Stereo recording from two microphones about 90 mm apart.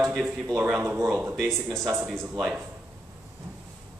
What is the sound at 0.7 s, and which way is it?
Speech, 30° right (ahead or behind).